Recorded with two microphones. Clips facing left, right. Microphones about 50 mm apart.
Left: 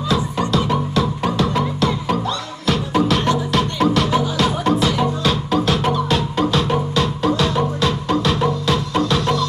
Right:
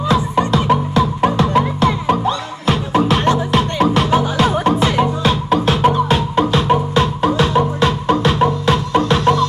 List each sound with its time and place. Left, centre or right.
0.1 s music: right